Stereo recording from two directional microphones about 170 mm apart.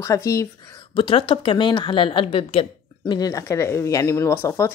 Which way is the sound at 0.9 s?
30° left (ahead or behind).